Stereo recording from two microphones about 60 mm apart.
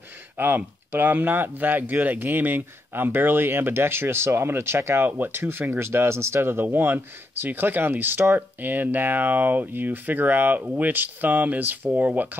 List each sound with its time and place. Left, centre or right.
0.4 s speech: right